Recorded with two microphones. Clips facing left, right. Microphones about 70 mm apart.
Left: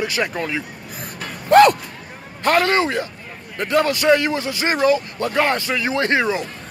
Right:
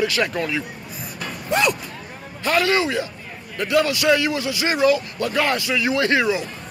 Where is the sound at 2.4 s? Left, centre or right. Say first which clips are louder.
Left 2 dB; left.